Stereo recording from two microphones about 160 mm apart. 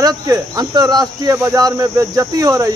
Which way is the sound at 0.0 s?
25° right (ahead or behind).